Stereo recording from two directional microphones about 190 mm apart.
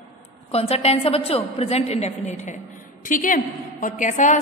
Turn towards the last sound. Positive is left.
turn(degrees=40)  # may be behind; listen again after turning